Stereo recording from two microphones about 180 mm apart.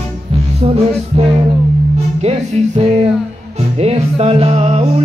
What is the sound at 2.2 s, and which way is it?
Music, 35° right (ahead or behind).